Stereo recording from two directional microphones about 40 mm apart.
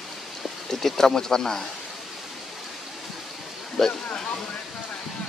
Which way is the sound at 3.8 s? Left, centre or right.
Centre.